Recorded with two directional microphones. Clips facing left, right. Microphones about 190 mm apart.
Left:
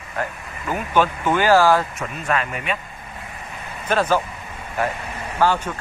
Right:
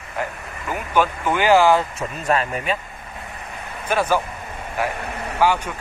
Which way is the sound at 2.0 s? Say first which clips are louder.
Right 2 dB; 35° right (ahead or behind).